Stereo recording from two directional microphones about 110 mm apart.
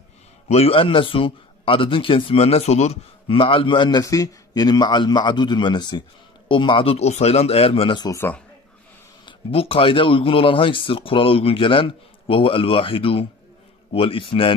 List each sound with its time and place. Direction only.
0.5 s speech: 60° left (ahead or behind); by 4.0 s 45° left (ahead or behind)
4.0 s a man's voice: 30° left (ahead or behind); by 8.0 s 55° left (ahead or behind)
9.5 s speech: 60° left (ahead or behind)